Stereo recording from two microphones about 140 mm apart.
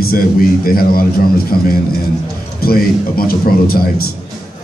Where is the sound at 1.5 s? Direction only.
90° left.